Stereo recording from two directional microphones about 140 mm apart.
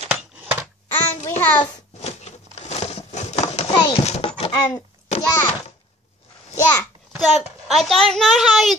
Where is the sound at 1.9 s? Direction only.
50° left (ahead or behind).